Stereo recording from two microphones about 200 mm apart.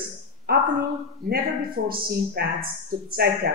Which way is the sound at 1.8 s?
45° right (ahead or behind).